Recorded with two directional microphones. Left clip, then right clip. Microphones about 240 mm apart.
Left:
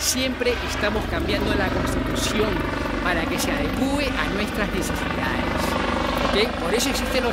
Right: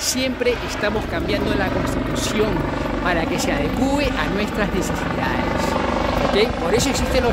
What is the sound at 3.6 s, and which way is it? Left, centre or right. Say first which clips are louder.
Speech: right 3 dB; centre.